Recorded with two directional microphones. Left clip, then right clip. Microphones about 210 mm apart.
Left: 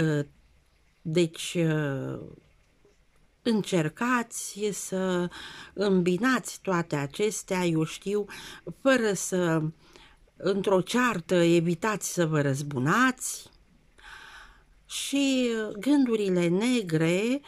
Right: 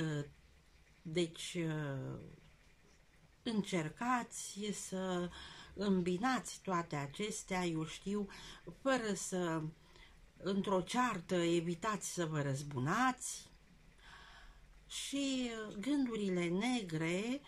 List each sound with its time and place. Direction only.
0.0 s speech: 45° left (ahead or behind)
3.4 s speech: 50° left (ahead or behind)